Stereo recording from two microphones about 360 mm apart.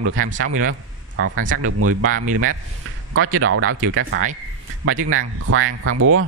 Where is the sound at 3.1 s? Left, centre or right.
Right.